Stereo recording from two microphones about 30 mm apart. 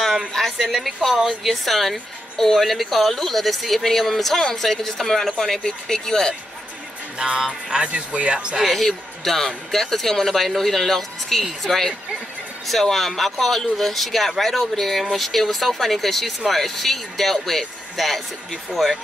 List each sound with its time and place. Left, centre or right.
0.5 s speech: centre
5.6 s speech: left
7.2 s music: centre
7.8 s speech: right
8.6 s speech: centre